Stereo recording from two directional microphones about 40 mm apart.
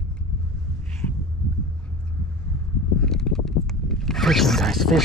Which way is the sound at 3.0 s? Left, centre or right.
Centre.